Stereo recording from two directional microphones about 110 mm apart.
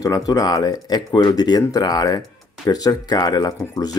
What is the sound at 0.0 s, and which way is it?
Speech, 35° left (ahead or behind).